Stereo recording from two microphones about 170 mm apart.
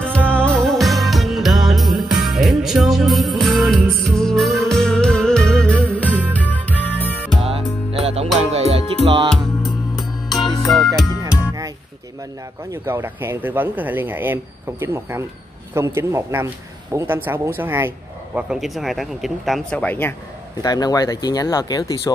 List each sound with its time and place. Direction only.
0.3 s music: 5° left (ahead or behind)
6.0 s music: 10° right (ahead or behind)
6.3 s music: 10° left (ahead or behind)
7.4 s music: 35° right (ahead or behind)
9.9 s music: centre (ahead or behind)
12.7 s speech: 15° right (ahead or behind); by 20.2 s 10° left (ahead or behind)
20.6 s speech: 20° left (ahead or behind)